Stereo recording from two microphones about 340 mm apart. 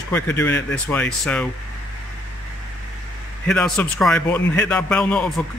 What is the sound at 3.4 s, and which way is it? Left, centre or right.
Speech, centre.